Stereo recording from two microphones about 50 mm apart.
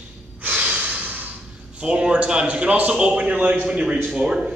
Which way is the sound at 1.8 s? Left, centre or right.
Right.